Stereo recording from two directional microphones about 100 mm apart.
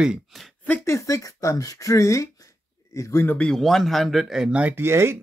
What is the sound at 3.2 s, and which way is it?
Speech, 10° left (ahead or behind).